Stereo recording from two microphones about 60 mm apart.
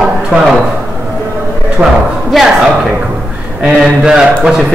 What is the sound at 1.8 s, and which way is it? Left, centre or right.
Speech, right.